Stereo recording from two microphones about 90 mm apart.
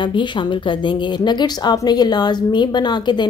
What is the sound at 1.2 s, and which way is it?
A woman's voice, 50° left (ahead or behind).